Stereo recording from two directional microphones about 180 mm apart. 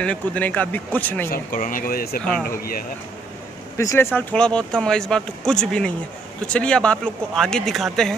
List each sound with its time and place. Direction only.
0.0 s speech: 5° left (ahead or behind)
1.3 s speech: 50° left (ahead or behind)
3.7 s speech: 15° left (ahead or behind)